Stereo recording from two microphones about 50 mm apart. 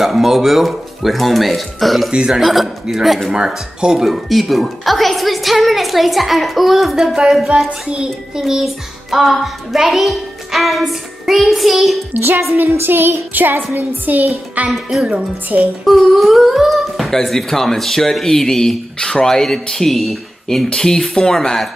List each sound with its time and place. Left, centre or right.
0.0 s speech: centre
2.1 s speech: centre
2.4 s a woman's voice: centre
7.4 s child singing: centre
9.1 s a woman's voice: centre
12.1 s a woman's voice: right
12.7 s music: right
13.7 s a child's voice: right
14.7 s child singing: centre
15.8 s speech: centre